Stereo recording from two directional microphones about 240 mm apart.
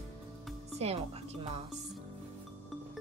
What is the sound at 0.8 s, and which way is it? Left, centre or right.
Speech, right.